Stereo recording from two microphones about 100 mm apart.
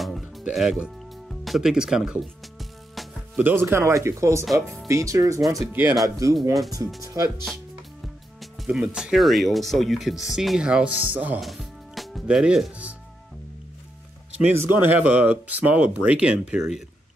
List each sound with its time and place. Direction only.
0.0 s music: centre (ahead or behind)
3.3 s speech: 20° right (ahead or behind)
5.7 s speech: 20° right (ahead or behind)
6.0 s speech: 35° right (ahead or behind)
8.4 s speech: centre (ahead or behind)
11.4 s music: centre (ahead or behind)
14.7 s speech: 20° right (ahead or behind)